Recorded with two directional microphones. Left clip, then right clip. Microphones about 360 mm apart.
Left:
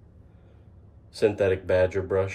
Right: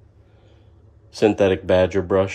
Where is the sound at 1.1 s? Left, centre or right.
Right.